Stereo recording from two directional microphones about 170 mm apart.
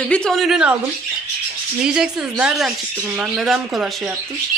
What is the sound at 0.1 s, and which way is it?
Speech, 5° left (ahead or behind).